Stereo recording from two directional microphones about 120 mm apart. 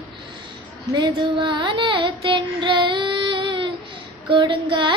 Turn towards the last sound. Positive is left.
turn(degrees=-45)  # may be behind; listen again after turning